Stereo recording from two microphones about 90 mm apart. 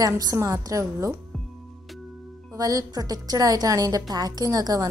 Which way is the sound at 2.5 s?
40° right (ahead or behind).